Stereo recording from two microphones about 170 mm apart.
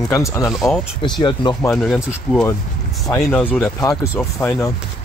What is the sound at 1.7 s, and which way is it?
Speech, centre (ahead or behind).